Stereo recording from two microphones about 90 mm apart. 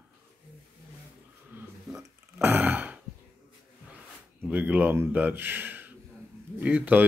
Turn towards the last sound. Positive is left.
turn(degrees=-20)  # may be behind; listen again after turning